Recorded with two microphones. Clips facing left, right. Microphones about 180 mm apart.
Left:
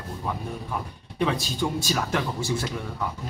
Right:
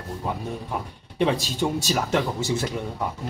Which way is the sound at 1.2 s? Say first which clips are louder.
Right 3 dB; 20° right (ahead or behind).